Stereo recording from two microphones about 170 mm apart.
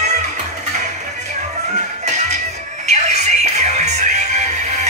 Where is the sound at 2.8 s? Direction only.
40° right (ahead or behind).